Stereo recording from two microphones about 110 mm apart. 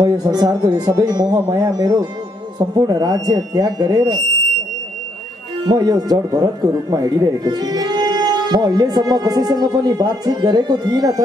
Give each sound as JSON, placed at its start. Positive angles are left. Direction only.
{"t": 0.0, "sound": "speech", "side_deg": -40}
{"t": 5.7, "sound": "speech", "side_deg": -40}